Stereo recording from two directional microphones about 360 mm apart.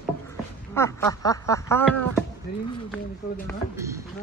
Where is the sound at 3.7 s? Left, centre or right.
Centre.